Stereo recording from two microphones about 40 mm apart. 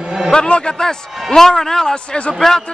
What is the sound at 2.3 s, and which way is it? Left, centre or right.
Speech, centre.